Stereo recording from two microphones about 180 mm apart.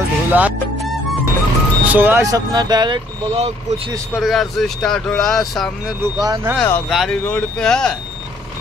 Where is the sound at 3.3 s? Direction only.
35° right (ahead or behind).